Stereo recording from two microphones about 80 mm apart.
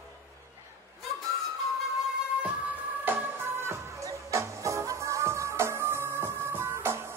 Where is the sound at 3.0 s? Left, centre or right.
Right.